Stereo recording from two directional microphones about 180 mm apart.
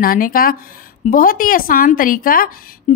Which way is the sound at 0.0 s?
50° left (ahead or behind).